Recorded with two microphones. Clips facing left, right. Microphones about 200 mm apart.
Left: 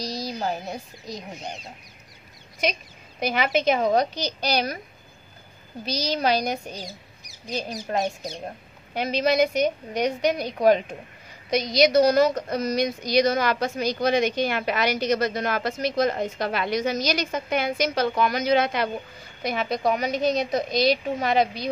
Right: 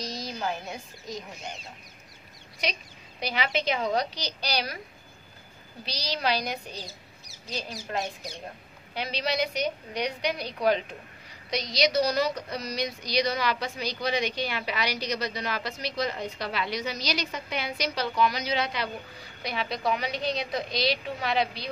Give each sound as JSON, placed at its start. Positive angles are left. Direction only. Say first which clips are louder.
{"t": 0.0, "sound": "speech", "louder": "left 4 dB", "side_deg": 35}
{"t": 2.6, "sound": "a woman's voice", "louder": "left 6 dB", "side_deg": 50}
{"t": 5.9, "sound": "a woman's voice", "louder": "left 6 dB", "side_deg": 45}
{"t": 6.7, "sound": "speech", "louder": "left 4 dB", "side_deg": 15}
{"t": 8.9, "sound": "a woman's voice", "louder": "left 8 dB", "side_deg": 50}